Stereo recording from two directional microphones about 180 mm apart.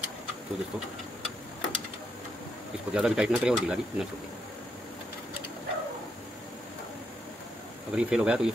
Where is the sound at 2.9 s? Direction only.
5° right (ahead or behind).